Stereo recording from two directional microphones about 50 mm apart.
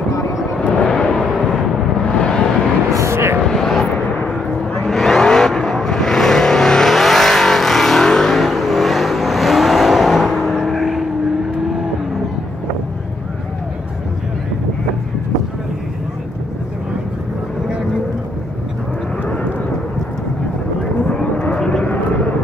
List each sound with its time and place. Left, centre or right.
0.7 s vehicle: centre
3.0 s vehicle: right
3.4 s vehicle: centre
4.8 s vehicle: centre
21.5 s vehicle: centre